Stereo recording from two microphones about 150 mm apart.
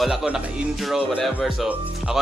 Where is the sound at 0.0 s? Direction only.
5° right (ahead or behind).